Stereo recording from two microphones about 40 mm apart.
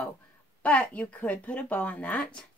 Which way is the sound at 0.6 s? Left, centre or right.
Left.